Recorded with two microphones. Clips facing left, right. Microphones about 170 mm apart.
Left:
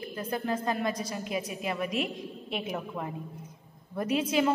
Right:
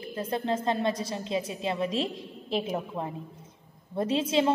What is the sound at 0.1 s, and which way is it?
A woman's voice, 25° right (ahead or behind).